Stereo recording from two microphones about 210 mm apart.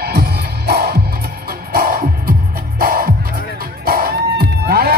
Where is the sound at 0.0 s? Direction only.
50° right (ahead or behind).